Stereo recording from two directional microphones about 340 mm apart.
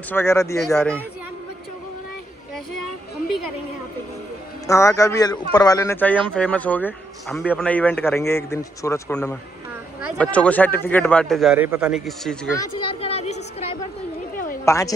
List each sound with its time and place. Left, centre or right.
0.1 s a man's voice: centre
4.6 s a man's voice: centre
12.8 s a sound: centre
14.6 s a woman's voice: centre